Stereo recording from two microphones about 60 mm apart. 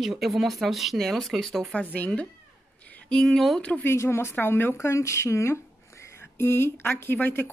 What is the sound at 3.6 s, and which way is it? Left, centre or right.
Speech, left.